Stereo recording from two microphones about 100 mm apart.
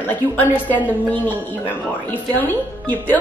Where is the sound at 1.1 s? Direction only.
15° left (ahead or behind).